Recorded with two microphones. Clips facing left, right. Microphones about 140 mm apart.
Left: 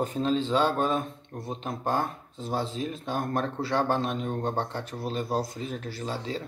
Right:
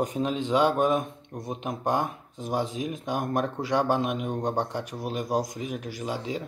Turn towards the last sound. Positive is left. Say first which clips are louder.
# right 2 dB
turn(degrees=-15)  # may be behind; listen again after turning